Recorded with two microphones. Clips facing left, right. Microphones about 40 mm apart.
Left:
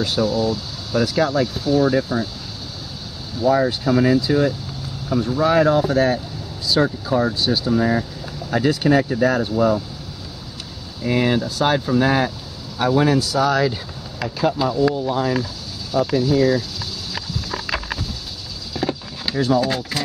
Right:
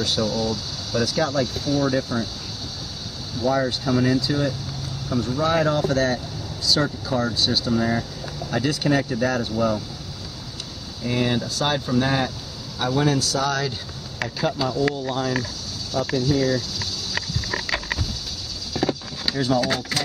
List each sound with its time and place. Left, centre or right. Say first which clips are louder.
0.0 s speech: left 4 dB; centre
3.3 s speech: left 5 dB; centre
11.1 s speech: left 4 dB; centre
18.7 s a sound: even; centre